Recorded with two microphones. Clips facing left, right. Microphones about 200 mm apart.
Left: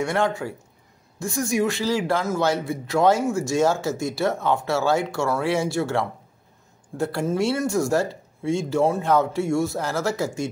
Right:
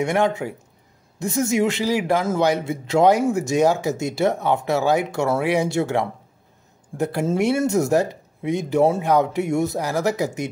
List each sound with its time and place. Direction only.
0.0 s speech: 20° right (ahead or behind)